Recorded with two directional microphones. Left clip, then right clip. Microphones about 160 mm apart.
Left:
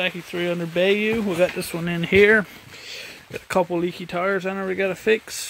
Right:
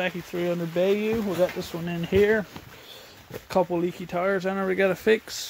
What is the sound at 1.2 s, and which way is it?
Speech, 30° left (ahead or behind).